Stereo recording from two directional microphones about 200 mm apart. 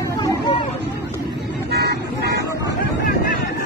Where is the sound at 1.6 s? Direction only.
50° right (ahead or behind).